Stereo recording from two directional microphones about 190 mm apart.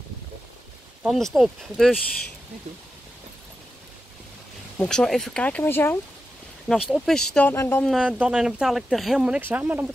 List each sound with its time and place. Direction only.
1.0 s speech: centre (ahead or behind)
4.7 s speech: 5° left (ahead or behind)
6.7 s speech: centre (ahead or behind)
7.9 s speech: 5° right (ahead or behind)